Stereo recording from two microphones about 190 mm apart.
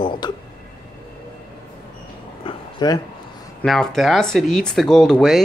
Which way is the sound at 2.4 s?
20° left (ahead or behind).